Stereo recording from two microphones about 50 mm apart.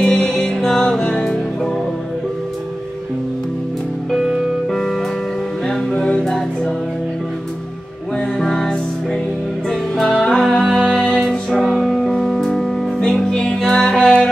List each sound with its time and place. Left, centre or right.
0.0 s music: centre
4.1 s music: centre
8.4 s music: centre